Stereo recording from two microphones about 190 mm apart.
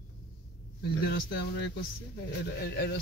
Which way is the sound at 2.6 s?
60° left (ahead or behind).